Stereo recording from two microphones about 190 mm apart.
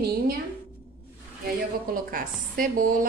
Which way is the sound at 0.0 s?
55° right (ahead or behind).